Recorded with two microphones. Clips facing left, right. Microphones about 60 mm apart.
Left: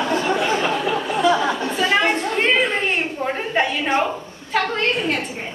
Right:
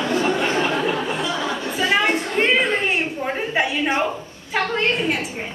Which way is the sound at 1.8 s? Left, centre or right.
Centre.